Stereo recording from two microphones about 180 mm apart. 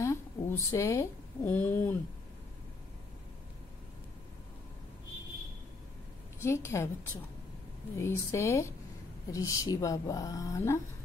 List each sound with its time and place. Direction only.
0.0 s speech: 15° left (ahead or behind)
6.4 s speech: 15° left (ahead or behind)
8.0 s speech: 15° left (ahead or behind)